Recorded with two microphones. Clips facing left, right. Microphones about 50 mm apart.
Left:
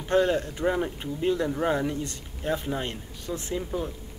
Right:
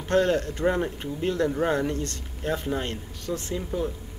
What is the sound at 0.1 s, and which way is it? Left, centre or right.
Speech, centre.